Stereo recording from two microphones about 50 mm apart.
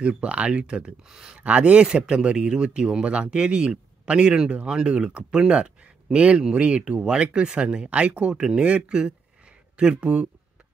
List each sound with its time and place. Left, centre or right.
0.0 s speech: right
1.4 s speech: right